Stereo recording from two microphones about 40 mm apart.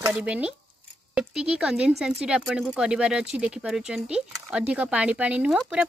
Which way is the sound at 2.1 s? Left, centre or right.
Right.